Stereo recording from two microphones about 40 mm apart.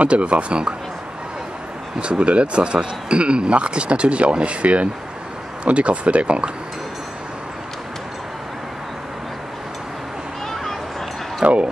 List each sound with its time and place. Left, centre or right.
0.0 s speech: right
2.0 s speech: right
10.5 s a sound: centre
11.4 s speech: right